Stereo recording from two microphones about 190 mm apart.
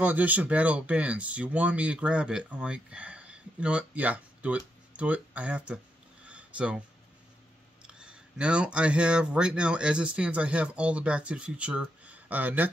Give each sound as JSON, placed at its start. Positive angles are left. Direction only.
{"t": 0.0, "sound": "speech", "side_deg": -10}
{"t": 6.2, "sound": "a sound", "side_deg": -5}
{"t": 7.8, "sound": "speech", "side_deg": -5}